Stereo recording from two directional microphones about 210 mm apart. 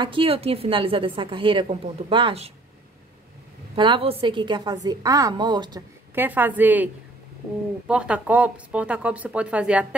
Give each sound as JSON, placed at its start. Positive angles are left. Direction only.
{"t": 0.0, "sound": "a woman's voice", "side_deg": -25}
{"t": 3.7, "sound": "a woman's voice", "side_deg": -25}
{"t": 6.1, "sound": "speech", "side_deg": -10}